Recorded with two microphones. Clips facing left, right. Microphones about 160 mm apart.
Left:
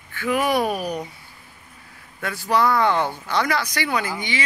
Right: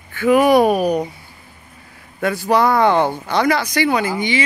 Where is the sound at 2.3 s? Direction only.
70° right (ahead or behind).